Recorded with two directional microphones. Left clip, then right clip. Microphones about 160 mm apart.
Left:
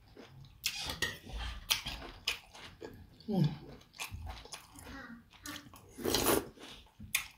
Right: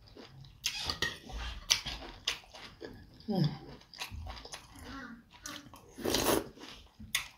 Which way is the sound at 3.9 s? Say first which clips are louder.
Right 1 dB; 5° left (ahead or behind).